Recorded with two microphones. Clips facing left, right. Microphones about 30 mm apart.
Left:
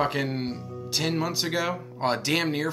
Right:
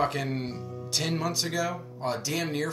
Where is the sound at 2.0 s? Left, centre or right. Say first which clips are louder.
Left 6 dB; left.